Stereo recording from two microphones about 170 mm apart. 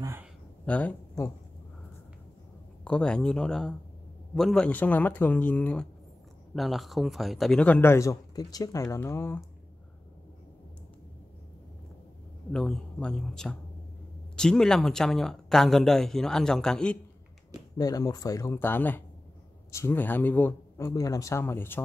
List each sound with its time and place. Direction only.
0.0 s a sound: 15° right (ahead or behind)
0.7 s speech: 10° left (ahead or behind)
2.8 s speech: 5° left (ahead or behind)
12.5 s speech: 5° left (ahead or behind)
17.7 s speech: 20° left (ahead or behind)